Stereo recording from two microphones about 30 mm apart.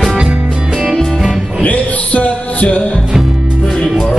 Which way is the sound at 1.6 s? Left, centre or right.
Left.